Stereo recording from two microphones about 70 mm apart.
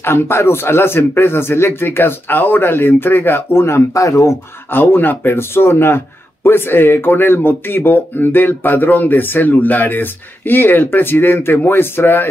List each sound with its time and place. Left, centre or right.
0.0 s a man's voice: left
4.7 s a man's voice: left